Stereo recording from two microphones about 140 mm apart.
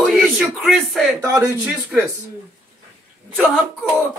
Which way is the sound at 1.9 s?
5° right (ahead or behind).